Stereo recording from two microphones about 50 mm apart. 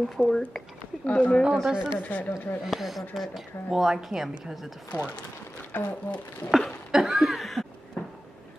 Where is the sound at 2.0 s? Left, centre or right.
Left.